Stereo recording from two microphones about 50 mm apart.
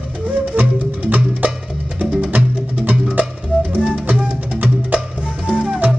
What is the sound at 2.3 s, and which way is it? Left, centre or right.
Music, right.